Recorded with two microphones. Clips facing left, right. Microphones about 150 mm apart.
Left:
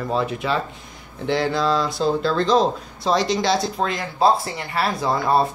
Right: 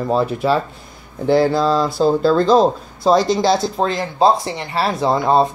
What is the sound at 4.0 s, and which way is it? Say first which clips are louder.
Speech: right 3 dB; 25° right (ahead or behind).